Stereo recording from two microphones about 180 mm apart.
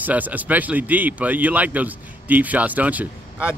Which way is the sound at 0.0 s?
10° right (ahead or behind).